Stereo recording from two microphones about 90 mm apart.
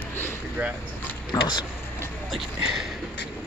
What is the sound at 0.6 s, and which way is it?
Speech, 15° right (ahead or behind).